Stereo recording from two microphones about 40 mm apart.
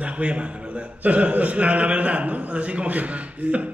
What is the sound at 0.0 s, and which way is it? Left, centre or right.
A man's voice, right.